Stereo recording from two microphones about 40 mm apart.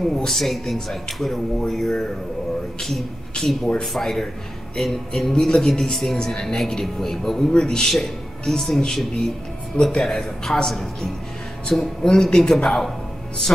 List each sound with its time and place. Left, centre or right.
0.3 s speech: centre
7.9 s speech: centre
10.0 s speech: centre